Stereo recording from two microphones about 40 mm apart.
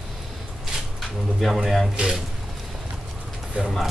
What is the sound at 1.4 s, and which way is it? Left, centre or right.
Speech, centre.